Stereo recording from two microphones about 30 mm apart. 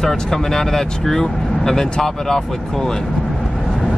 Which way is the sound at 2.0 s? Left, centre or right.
Centre.